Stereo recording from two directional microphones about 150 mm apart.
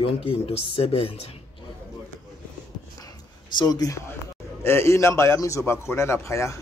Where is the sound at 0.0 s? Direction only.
40° left (ahead or behind).